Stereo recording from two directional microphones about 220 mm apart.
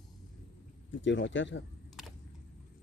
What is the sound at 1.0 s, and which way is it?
Speech, 55° left (ahead or behind).